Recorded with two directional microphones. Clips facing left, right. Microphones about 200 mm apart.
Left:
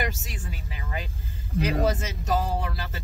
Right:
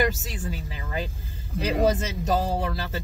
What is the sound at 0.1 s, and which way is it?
Speech, 35° right (ahead or behind).